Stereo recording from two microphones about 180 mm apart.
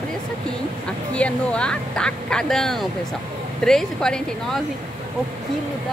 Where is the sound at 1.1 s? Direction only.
5° left (ahead or behind).